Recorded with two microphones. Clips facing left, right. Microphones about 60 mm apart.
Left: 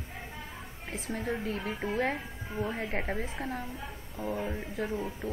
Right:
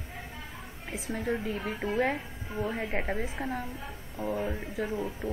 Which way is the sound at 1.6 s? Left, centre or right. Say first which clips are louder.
Right 2 dB; centre.